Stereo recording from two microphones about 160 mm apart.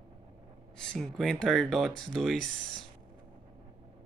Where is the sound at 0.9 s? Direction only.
Centre (ahead or behind).